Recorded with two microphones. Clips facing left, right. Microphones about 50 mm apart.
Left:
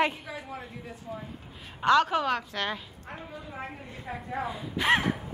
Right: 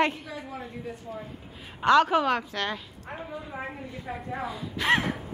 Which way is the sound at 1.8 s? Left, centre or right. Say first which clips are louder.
Right 2 dB; centre.